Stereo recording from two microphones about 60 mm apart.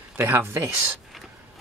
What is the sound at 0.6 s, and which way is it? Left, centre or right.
Speech, right.